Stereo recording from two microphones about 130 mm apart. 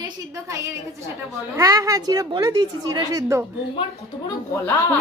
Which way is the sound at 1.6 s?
25° right (ahead or behind).